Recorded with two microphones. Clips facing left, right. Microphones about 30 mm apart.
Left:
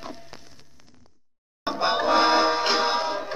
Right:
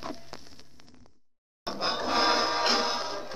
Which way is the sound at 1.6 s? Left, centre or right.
Left.